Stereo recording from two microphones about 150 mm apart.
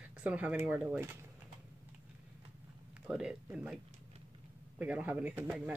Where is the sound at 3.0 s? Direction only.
5° right (ahead or behind).